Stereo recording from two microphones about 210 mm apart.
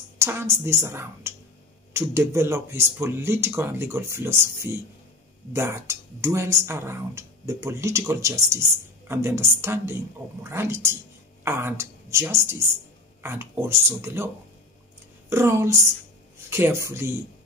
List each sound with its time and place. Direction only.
0.2 s speech: 10° right (ahead or behind)